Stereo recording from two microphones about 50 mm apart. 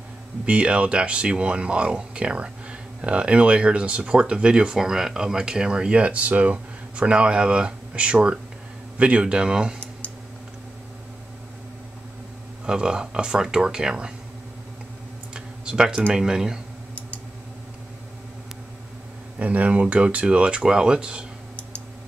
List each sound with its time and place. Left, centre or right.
0.5 s speech: right
12.6 s speech: centre
15.3 s tick-tock: centre
16.1 s speech: centre
19.3 s speech: right